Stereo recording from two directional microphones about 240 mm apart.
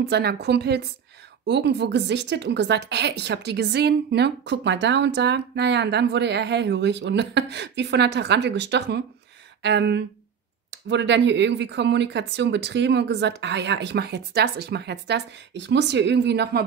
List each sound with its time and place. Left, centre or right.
0.1 s a woman's voice: right